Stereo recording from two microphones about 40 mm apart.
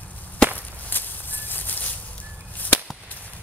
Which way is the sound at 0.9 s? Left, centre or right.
Left.